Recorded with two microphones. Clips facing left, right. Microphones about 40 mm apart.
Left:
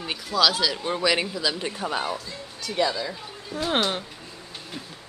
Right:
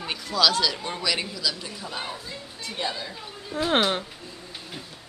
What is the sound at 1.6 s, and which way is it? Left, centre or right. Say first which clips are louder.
Speech: left 6 dB; left.